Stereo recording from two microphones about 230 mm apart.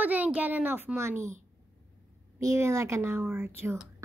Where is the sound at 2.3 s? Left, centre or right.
Centre.